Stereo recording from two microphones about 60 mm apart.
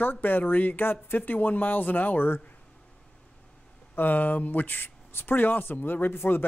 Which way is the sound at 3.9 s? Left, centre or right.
Left.